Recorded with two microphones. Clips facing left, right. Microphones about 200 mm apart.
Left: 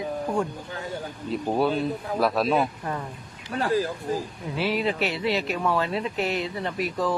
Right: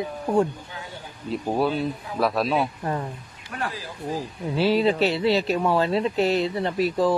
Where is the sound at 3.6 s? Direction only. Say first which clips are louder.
Left 10 dB; 45° left (ahead or behind).